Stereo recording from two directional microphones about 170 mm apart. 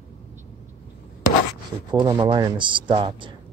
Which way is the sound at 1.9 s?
25° right (ahead or behind).